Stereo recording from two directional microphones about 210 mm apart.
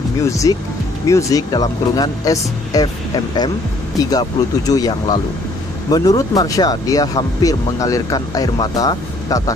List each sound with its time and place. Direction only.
0.2 s speech: 15° left (ahead or behind)
4.1 s speech: 15° left (ahead or behind)